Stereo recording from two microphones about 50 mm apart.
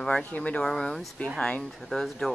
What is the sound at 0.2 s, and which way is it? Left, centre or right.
Speech, left.